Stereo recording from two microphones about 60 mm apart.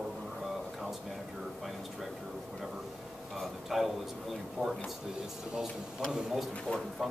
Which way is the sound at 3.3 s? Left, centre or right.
Centre.